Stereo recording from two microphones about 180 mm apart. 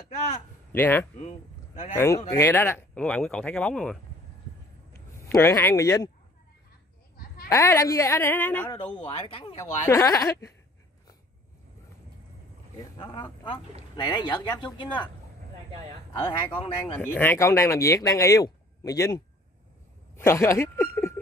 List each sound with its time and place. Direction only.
0.1 s a sound: 40° left (ahead or behind)
0.7 s speech: 10° left (ahead or behind)
7.4 s speech: 15° left (ahead or behind)
8.6 s speech: 25° left (ahead or behind)
9.8 s speech: 15° left (ahead or behind)
12.9 s speech: 20° left (ahead or behind)
17.0 s speech: 10° left (ahead or behind)